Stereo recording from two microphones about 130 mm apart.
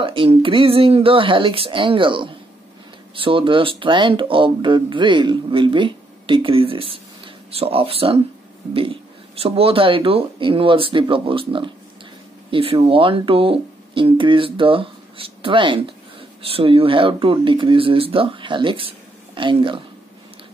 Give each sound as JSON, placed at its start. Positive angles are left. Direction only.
{"t": 0.0, "sound": "speech", "side_deg": -40}